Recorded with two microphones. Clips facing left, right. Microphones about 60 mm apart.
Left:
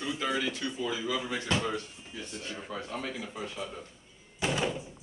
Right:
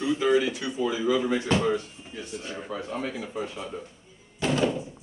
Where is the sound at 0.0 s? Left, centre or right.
Centre.